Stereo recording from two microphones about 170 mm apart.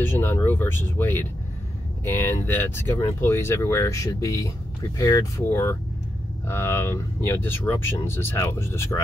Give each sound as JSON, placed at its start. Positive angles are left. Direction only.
{"t": 0.0, "sound": "speech", "side_deg": 15}